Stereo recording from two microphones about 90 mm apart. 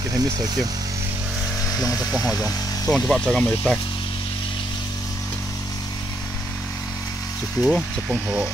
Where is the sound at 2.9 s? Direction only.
5° left (ahead or behind).